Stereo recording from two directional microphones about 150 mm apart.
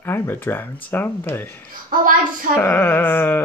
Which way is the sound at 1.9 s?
70° right (ahead or behind).